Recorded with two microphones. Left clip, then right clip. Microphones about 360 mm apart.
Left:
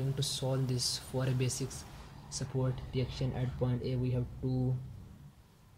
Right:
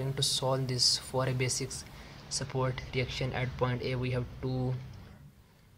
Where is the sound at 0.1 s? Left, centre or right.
Centre.